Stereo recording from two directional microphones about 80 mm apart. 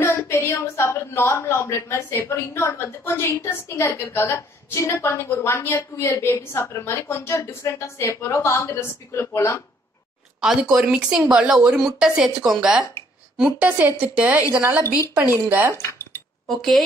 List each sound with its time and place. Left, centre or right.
0.0 s a woman's voice: left
10.6 s a woman's voice: centre
15.7 s a woman's voice: left
16.4 s speech: centre